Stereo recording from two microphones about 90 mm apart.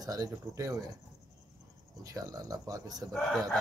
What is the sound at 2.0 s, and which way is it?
Speech, 40° right (ahead or behind).